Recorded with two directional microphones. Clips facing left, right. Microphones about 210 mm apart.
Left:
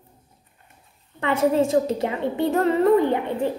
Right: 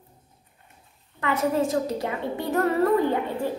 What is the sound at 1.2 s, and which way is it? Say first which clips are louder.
A woman's voice: left 4 dB; 25° left (ahead or behind).